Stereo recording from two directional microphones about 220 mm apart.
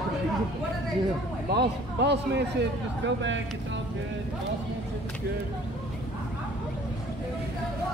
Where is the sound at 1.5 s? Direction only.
50° right (ahead or behind).